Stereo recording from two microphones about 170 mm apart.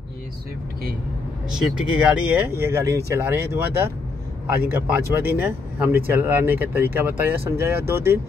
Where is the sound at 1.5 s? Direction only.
5° right (ahead or behind).